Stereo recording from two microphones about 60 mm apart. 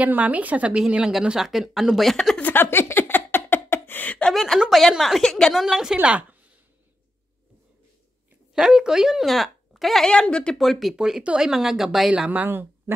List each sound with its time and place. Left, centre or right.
0.0 s speech: right; by 2.3 s centre
2.4 s a sound: left
4.3 s a sound: centre
4.6 s a woman's voice: centre
5.5 s speech: centre
8.5 s a woman's voice: centre
10.0 s speech: centre
10.6 s a woman's voice: centre
12.3 s speech: right